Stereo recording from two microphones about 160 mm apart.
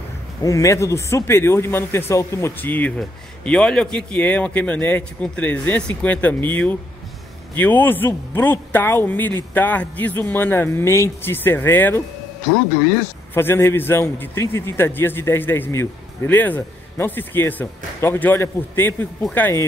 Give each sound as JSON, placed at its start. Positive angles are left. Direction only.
{"t": 0.4, "sound": "a man's voice", "side_deg": 20}
{"t": 13.3, "sound": "a man's voice", "side_deg": 15}